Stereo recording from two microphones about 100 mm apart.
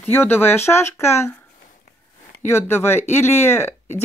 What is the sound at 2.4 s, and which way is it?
Speech, 25° left (ahead or behind).